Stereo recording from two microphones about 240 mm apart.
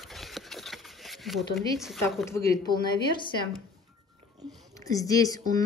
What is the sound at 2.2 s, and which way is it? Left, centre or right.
Speech, centre.